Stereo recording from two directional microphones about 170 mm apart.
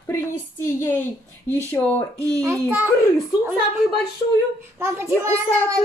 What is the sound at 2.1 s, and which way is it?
Speech, 20° right (ahead or behind).